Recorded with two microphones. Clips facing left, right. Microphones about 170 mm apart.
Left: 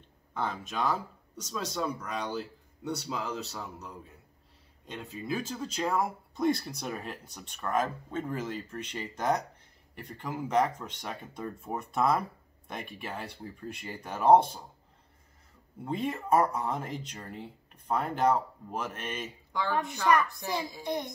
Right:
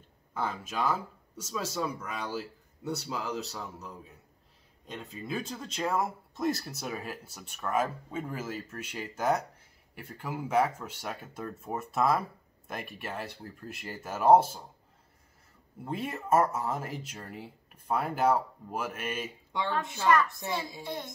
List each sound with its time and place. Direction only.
0.3 s speech: 5° right (ahead or behind)
15.8 s speech: 5° right (ahead or behind)
20.8 s speech: 15° left (ahead or behind)